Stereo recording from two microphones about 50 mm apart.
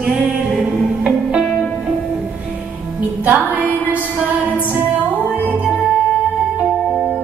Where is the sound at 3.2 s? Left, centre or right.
Right.